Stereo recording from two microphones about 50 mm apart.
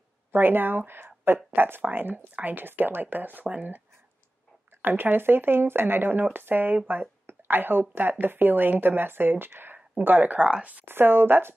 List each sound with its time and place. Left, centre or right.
0.3 s speech: right
4.8 s speech: right
6.9 s a sound: right
7.9 s speech: right
10.4 s speech: right
10.9 s speech: right